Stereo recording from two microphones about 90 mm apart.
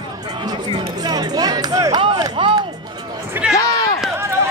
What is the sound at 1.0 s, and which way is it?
Music, 50° right (ahead or behind).